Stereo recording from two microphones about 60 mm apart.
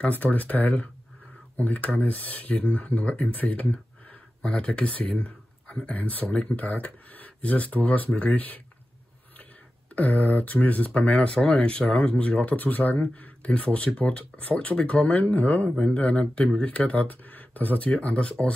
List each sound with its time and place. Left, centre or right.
0.1 s speech: left
9.9 s speech: left